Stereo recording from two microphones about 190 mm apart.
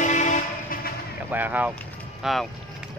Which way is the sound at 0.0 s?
40° left (ahead or behind).